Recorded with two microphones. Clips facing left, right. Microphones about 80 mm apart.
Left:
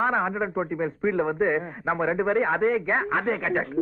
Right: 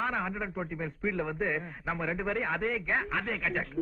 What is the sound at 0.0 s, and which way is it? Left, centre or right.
A man's voice, left.